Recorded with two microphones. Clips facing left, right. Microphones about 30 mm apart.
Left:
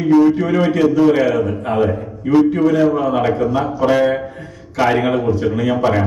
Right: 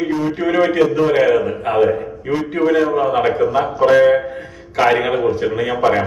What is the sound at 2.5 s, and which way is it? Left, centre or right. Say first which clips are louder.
Speech: even; right.